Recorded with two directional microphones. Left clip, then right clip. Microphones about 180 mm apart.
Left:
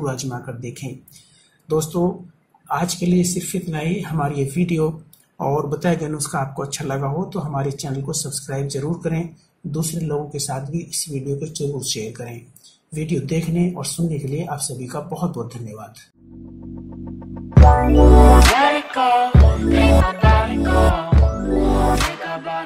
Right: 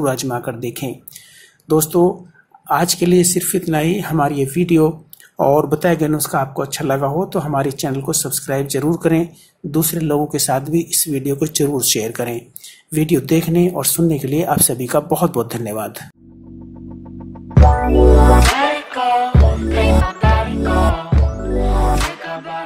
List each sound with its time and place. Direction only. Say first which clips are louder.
0.0 s speech: right 8 dB; 30° right (ahead or behind)
17.6 s music: even; centre (ahead or behind)